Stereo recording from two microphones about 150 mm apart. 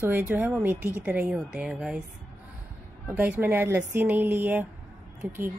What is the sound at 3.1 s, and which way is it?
Speech, 10° right (ahead or behind).